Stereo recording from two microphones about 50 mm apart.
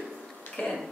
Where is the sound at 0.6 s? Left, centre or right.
Left.